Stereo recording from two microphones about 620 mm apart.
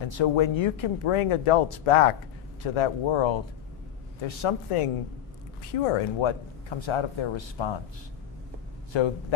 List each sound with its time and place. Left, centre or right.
0.0 s speech: left
8.9 s speech: left